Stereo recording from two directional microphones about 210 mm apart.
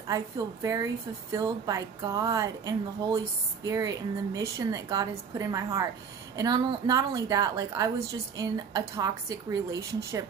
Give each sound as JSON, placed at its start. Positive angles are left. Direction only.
{"t": 0.1, "sound": "a woman's voice", "side_deg": -15}